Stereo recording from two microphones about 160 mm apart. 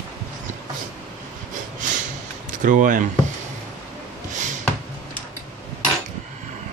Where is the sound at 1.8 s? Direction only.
50° right (ahead or behind).